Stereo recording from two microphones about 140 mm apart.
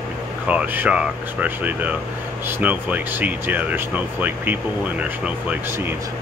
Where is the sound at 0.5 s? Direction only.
10° right (ahead or behind).